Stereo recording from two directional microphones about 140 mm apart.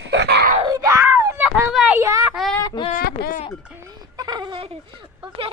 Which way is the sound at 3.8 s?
30° right (ahead or behind).